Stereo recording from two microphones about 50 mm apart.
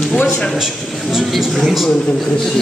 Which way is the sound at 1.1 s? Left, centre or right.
Centre.